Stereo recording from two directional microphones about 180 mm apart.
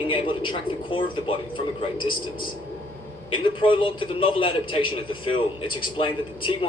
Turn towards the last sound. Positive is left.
turn(degrees=30)  # may be behind; listen again after turning